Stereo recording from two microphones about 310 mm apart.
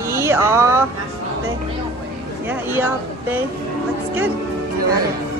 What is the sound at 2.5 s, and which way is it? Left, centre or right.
Speech, centre.